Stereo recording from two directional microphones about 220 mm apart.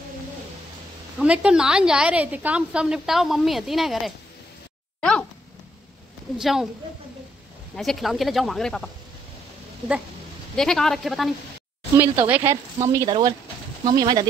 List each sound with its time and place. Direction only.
1.2 s a woman's voice: 5° right (ahead or behind)
6.3 s a woman's voice: centre (ahead or behind)
7.7 s a woman's voice: centre (ahead or behind)
10.5 s a woman's voice: centre (ahead or behind); by 14.2 s 15° right (ahead or behind)